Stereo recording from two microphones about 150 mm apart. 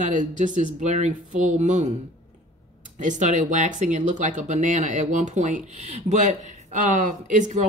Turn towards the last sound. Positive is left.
turn(degrees=-55)  # may be behind; listen again after turning